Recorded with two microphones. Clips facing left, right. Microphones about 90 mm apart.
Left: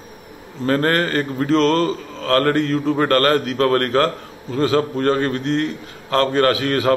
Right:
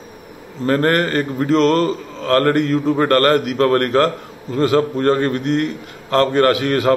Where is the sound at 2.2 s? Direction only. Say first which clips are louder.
Right 2 dB; 25° right (ahead or behind).